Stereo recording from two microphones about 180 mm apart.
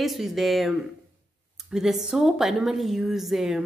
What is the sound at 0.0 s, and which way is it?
A woman's voice, centre (ahead or behind).